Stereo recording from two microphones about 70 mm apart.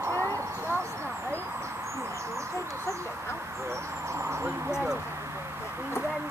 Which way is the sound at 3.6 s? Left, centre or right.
Right.